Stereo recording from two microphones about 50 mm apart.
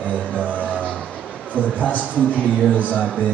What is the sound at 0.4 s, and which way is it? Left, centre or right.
Music, left.